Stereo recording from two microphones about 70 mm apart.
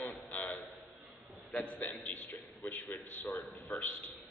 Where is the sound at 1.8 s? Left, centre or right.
Left.